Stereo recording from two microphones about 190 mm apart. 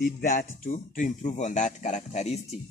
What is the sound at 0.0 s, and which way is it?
Speech, 45° left (ahead or behind).